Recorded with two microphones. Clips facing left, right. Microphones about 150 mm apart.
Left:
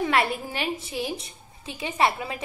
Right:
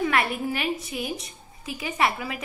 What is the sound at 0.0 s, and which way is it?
A woman's voice, 30° left (ahead or behind).